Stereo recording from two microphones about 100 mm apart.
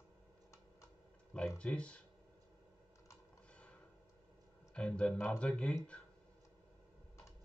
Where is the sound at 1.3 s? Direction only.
10° left (ahead or behind).